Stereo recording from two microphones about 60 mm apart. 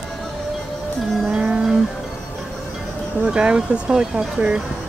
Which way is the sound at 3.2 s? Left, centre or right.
Centre.